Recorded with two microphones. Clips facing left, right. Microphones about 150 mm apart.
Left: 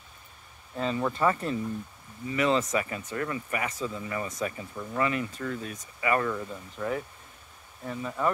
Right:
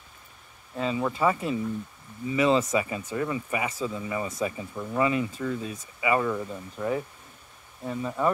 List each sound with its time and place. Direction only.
0.7 s speech: 5° right (ahead or behind)